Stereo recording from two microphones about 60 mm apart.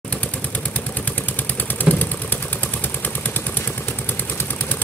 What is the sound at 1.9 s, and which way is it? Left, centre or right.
Vehicle, right.